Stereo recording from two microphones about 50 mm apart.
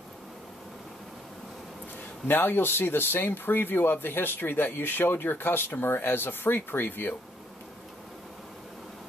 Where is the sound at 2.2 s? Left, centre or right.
Left.